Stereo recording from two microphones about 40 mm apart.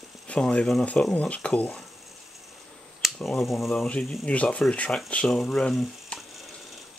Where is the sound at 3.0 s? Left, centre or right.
Centre.